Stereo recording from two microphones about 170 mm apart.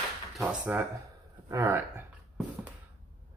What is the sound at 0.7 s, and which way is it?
Speech, 10° right (ahead or behind).